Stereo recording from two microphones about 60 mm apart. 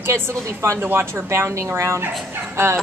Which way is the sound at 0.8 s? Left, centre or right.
Right.